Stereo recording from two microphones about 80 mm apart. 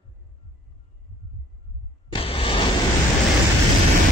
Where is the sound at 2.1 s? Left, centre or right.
Left.